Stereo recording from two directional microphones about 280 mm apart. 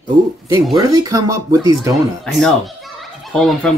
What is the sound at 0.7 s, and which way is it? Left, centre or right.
Speech, centre.